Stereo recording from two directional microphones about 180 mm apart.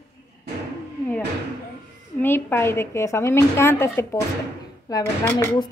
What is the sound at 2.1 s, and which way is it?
A woman's voice, 10° left (ahead or behind).